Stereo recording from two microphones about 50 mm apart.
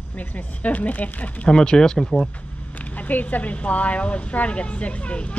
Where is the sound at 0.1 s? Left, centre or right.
Left.